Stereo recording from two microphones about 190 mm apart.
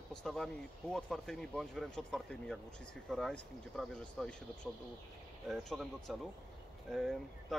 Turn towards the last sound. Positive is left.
turn(degrees=0)  # may be behind; listen again after turning